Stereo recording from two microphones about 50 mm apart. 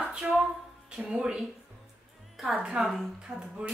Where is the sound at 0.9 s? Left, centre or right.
Centre.